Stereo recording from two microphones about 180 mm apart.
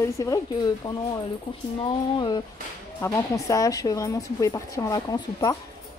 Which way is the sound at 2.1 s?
25° left (ahead or behind).